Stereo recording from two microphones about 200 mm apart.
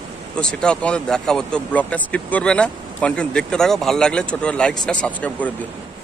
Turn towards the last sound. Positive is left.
turn(degrees=5)  # may be behind; listen again after turning